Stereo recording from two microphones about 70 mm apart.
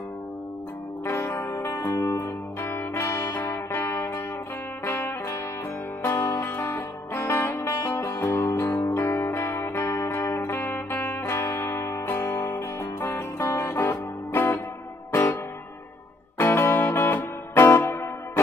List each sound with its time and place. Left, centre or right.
1.0 s music: left
1.9 s music: left
6.5 s music: left
7.5 s music: left
8.4 s music: left
16.3 s music: left